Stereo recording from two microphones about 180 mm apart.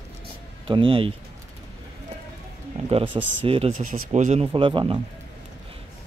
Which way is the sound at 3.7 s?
45° right (ahead or behind).